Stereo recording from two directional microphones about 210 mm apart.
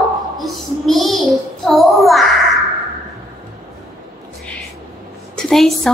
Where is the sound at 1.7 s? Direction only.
Centre (ahead or behind).